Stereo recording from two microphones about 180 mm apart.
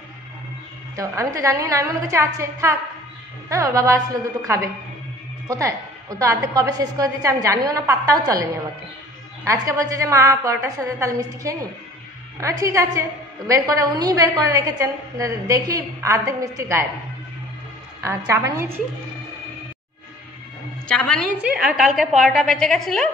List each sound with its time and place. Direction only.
0.9 s a woman's voice: 15° right (ahead or behind)
18.0 s a woman's voice: 15° right (ahead or behind)
20.9 s a woman's voice: 5° left (ahead or behind)
21.4 s a woman's voice: 5° right (ahead or behind)